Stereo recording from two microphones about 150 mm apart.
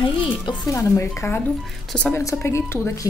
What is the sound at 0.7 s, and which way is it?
A woman's voice, 20° left (ahead or behind).